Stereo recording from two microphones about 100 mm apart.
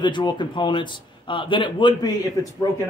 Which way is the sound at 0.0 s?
50° left (ahead or behind).